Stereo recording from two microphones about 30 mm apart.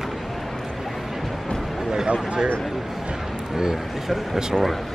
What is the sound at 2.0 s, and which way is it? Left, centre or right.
Speech, right.